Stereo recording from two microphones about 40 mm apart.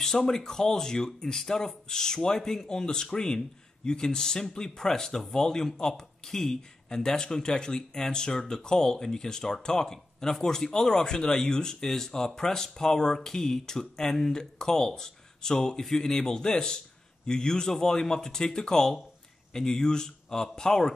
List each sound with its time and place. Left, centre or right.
0.0 s speech: centre